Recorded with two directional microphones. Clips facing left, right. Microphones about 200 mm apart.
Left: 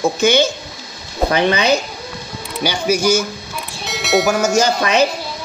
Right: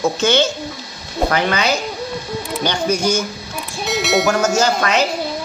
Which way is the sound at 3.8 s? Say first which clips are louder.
Even; centre (ahead or behind).